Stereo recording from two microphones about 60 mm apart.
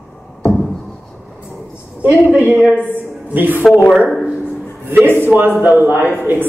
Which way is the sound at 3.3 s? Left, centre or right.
Right.